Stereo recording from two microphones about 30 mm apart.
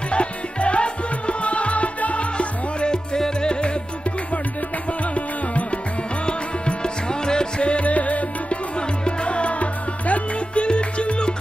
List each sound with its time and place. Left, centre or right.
0.1 s music: left
5.1 s music: left
6.2 s music: left
7.8 s music: left
9.0 s music: left
10.6 s music: left